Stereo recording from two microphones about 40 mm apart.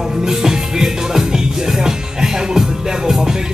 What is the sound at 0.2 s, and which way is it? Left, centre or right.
Music, centre.